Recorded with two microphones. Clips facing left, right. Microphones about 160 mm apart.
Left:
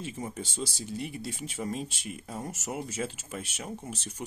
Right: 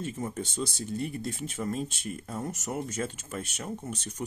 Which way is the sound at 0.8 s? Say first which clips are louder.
Right 3 dB; 45° right (ahead or behind).